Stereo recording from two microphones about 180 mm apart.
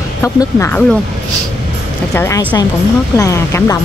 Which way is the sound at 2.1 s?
20° left (ahead or behind).